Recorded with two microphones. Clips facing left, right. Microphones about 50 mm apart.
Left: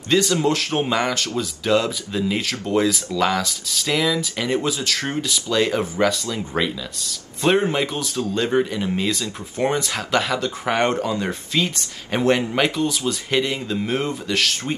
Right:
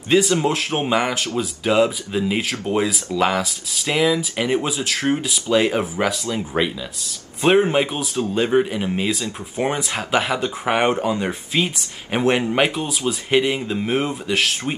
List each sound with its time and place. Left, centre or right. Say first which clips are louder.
0.1 s speech: right 1 dB; centre
8.6 s speech: right 1 dB; right